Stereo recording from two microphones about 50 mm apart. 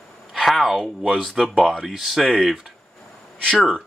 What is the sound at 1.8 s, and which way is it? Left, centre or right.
Speech, centre.